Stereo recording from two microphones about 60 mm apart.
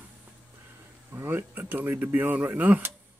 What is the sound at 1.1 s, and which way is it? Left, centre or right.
Speech, right.